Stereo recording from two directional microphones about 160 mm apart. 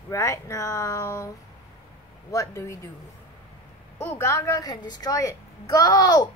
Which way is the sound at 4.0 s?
15° left (ahead or behind).